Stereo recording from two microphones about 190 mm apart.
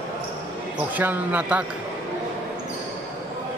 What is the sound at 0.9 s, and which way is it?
Speech, 10° right (ahead or behind).